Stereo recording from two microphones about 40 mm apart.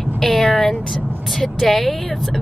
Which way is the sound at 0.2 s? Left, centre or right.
Centre.